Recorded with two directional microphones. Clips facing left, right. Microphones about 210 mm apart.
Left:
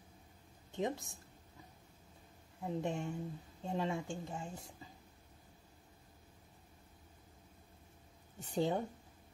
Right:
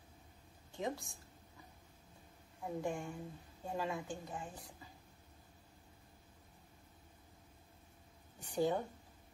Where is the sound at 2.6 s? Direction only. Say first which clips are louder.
Left 2 dB; 25° left (ahead or behind).